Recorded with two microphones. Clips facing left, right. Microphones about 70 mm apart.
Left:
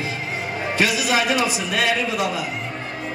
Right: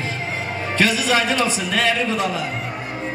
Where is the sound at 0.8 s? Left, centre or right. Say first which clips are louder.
Right 2 dB; centre.